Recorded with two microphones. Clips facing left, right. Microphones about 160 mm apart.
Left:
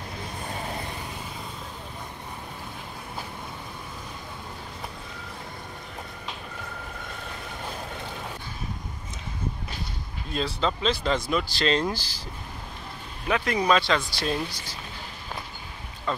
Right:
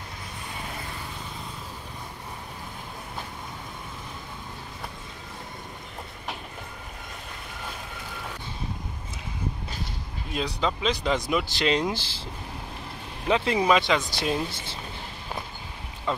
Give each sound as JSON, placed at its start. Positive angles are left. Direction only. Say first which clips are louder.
{"t": 10.3, "sound": "speech", "louder": "left 1 dB", "side_deg": -10}
{"t": 13.3, "sound": "speech", "louder": "right 1 dB", "side_deg": -25}
{"t": 16.1, "sound": "speech", "louder": "right 1 dB", "side_deg": -20}